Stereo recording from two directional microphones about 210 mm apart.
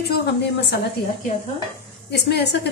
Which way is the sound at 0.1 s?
55° left (ahead or behind).